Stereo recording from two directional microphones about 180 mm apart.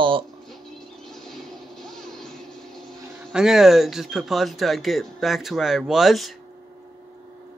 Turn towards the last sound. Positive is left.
turn(degrees=0)  # may be behind; listen again after turning